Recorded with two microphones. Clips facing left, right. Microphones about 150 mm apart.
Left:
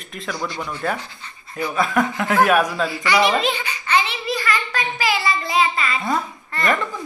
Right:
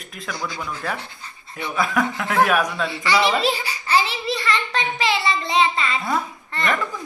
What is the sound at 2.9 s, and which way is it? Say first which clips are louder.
Speech: left 1 dB; 25° right (ahead or behind).